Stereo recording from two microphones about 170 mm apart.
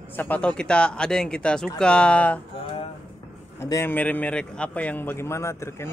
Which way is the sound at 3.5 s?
15° left (ahead or behind).